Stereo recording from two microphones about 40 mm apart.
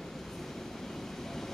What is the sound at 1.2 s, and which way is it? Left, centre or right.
Vehicle, centre.